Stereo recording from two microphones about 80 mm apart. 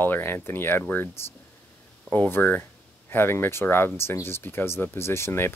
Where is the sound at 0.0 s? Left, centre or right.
Left.